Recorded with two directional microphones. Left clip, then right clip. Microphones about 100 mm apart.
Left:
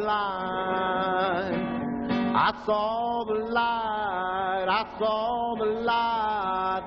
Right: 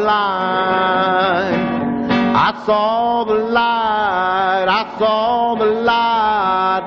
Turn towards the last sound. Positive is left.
turn(degrees=35)  # may be behind; listen again after turning